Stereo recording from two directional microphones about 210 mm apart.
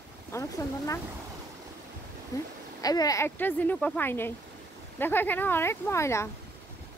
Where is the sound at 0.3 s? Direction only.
15° left (ahead or behind).